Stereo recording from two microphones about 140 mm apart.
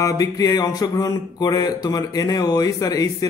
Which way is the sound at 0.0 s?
25° left (ahead or behind).